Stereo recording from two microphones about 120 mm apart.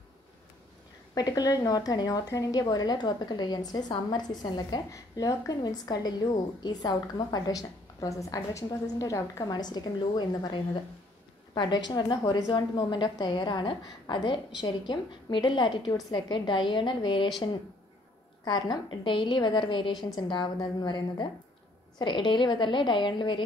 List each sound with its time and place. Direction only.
1.1 s a woman's voice: 30° left (ahead or behind)
18.4 s a woman's voice: 35° left (ahead or behind)